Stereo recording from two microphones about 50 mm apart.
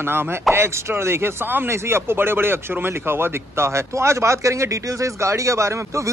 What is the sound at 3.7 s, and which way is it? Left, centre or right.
Speech, right.